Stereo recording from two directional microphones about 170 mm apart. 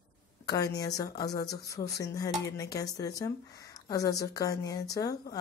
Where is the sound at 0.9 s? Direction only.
20° left (ahead or behind).